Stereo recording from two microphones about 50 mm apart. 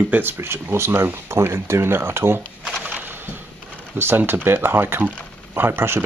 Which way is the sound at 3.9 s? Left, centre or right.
Right.